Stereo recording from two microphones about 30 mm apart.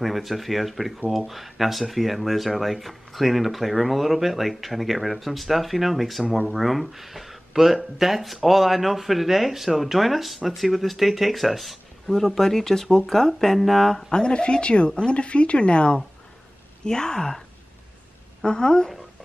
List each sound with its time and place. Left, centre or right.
0.0 s speech: centre
14.1 s a woman's voice: left
16.8 s speech: left
18.4 s speech: left